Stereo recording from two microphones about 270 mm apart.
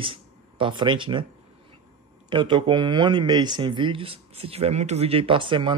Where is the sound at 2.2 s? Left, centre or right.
Centre.